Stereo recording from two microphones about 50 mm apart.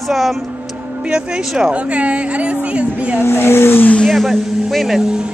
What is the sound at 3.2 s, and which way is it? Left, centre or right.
Speech, left.